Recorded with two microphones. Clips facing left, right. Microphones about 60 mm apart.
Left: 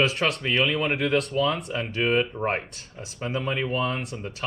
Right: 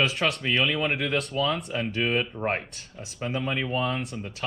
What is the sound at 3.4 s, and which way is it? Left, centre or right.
Speech, centre.